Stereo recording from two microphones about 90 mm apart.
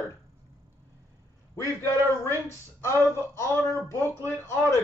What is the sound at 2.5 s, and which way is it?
Speech, 30° left (ahead or behind).